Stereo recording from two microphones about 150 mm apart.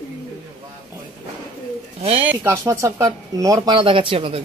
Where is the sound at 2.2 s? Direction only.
15° right (ahead or behind); by 4.4 s 40° right (ahead or behind).